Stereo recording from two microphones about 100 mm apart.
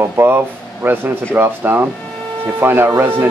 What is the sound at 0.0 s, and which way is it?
Speech, 25° right (ahead or behind).